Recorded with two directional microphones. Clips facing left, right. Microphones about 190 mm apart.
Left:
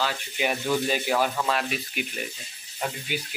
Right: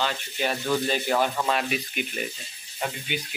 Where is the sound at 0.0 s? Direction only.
5° left (ahead or behind).